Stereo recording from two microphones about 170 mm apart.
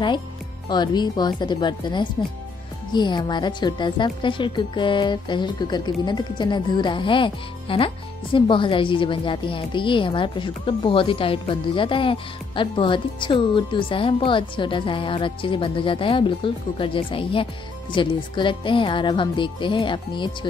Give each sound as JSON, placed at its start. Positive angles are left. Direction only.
{"t": 0.7, "sound": "speech", "side_deg": 25}